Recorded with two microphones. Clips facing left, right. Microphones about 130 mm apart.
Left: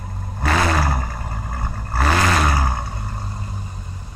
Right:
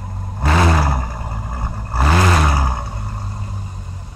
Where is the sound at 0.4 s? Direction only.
15° right (ahead or behind).